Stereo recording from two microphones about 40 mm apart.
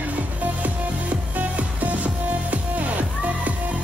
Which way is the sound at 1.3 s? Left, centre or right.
Right.